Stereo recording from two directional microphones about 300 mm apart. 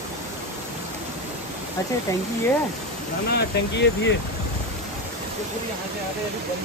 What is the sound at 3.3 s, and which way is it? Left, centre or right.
Speech, left.